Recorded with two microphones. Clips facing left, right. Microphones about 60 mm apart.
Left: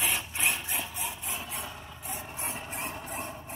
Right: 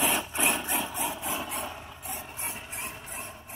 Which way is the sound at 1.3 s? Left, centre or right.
Centre.